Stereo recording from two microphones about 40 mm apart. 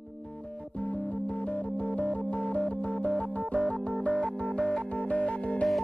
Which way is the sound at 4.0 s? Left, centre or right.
Left.